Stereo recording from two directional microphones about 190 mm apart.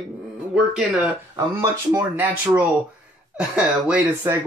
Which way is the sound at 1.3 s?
15° right (ahead or behind).